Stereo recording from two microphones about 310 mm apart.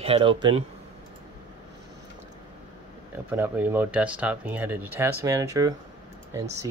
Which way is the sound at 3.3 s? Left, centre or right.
Centre.